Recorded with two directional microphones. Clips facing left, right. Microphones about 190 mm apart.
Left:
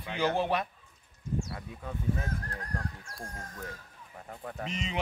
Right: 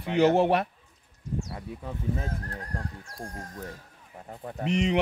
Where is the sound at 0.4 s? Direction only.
65° right (ahead or behind).